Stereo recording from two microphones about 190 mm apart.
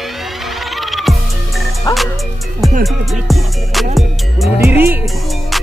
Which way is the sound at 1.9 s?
20° left (ahead or behind).